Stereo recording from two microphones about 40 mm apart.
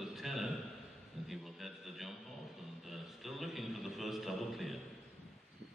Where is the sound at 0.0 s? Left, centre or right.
Centre.